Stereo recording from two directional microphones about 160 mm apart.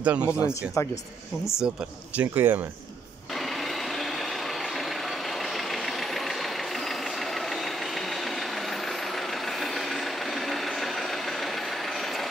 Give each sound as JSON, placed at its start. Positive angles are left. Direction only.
{"t": 0.0, "sound": "speech", "side_deg": -10}
{"t": 0.3, "sound": "speech", "side_deg": 20}
{"t": 2.1, "sound": "speech", "side_deg": -10}